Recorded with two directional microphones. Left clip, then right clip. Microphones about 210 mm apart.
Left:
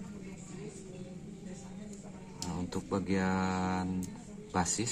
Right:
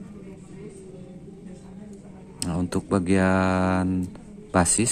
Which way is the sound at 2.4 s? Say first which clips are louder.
Right 11 dB; 45° right (ahead or behind).